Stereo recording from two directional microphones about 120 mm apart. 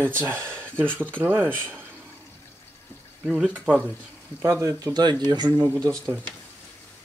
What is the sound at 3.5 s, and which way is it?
Speech, 5° right (ahead or behind).